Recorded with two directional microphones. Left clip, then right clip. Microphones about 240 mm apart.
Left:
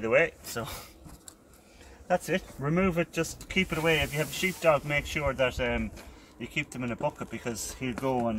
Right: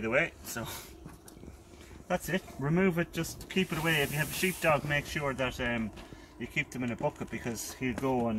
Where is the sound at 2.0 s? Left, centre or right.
Centre.